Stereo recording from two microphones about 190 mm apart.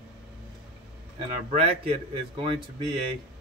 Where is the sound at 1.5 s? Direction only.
30° right (ahead or behind).